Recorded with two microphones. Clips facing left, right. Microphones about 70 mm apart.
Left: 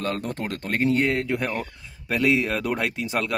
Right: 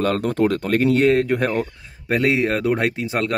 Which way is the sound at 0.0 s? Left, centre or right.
Right.